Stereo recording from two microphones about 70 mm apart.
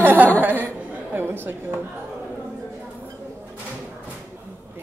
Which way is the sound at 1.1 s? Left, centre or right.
Right.